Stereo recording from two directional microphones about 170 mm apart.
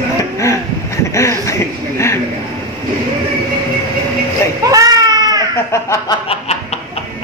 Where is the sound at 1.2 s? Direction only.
15° left (ahead or behind).